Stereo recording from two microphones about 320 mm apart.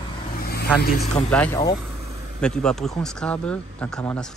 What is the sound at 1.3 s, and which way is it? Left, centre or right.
Speech, centre.